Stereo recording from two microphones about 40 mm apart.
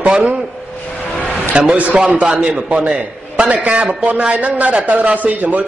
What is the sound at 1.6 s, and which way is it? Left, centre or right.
Speech, right.